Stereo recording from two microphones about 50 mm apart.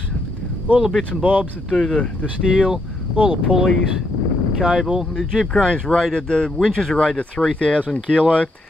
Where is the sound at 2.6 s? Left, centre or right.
Centre.